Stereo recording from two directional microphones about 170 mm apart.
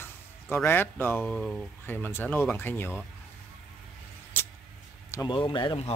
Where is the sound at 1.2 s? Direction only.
Centre (ahead or behind).